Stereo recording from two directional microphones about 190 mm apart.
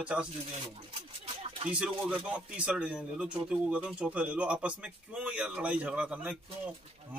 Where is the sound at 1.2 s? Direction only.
30° right (ahead or behind).